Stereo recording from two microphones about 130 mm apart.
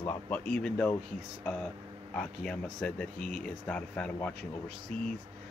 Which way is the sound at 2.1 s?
5° left (ahead or behind).